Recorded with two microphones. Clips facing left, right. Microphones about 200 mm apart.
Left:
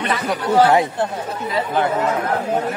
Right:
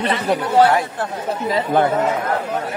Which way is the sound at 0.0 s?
30° right (ahead or behind).